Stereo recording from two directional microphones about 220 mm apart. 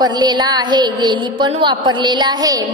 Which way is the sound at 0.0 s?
20° right (ahead or behind).